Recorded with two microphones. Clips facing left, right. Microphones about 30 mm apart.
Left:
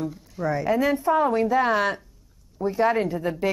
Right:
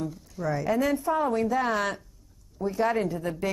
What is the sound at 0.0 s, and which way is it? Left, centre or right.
A woman's voice, centre.